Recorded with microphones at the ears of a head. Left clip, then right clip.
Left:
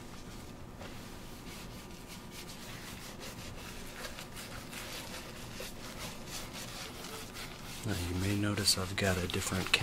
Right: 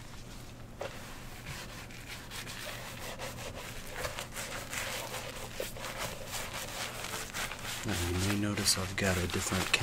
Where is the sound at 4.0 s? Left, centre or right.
Right.